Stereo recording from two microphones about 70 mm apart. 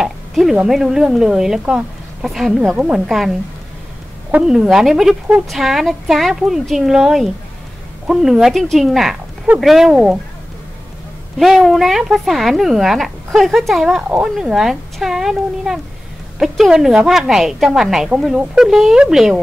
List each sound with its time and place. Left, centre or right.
0.0 s a sound: centre
0.6 s a woman's voice: centre
4.4 s a woman's voice: centre
11.3 s speech: centre
14.0 s a woman's voice: centre